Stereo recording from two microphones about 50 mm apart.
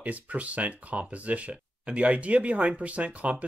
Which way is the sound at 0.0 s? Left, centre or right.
Right.